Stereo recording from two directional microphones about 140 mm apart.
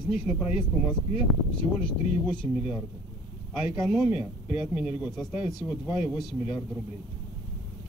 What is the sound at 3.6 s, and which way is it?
Speech, 5° right (ahead or behind).